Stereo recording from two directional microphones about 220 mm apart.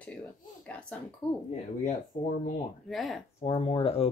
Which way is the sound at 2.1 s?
35° left (ahead or behind).